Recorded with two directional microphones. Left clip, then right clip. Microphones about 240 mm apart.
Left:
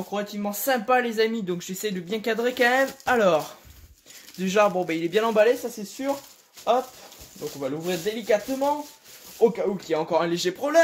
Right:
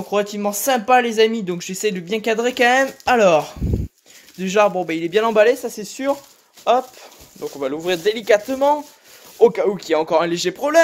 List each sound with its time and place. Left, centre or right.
0.1 s speech: right
9.4 s speech: right